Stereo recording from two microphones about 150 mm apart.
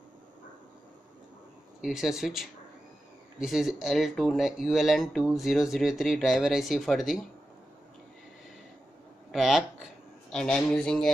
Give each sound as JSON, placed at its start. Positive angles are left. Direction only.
{"t": 1.8, "sound": "speech", "side_deg": 0}
{"t": 9.3, "sound": "speech", "side_deg": 0}